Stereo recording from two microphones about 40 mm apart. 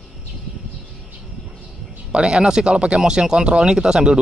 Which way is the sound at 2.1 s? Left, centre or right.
Right.